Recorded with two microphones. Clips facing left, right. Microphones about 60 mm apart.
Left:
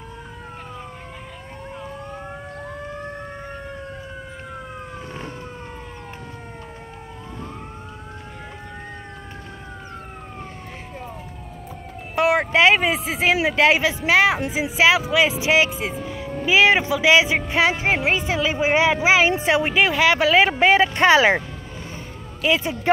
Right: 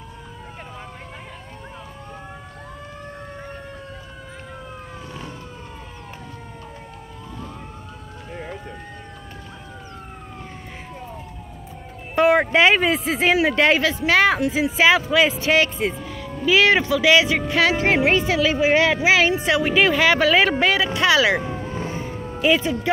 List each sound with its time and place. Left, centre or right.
12.2 s speech: centre
16.4 s speech: centre
18.3 s speech: left
19.7 s speech: centre
20.7 s speech: left
21.4 s vehicle: right
21.6 s vehicle: right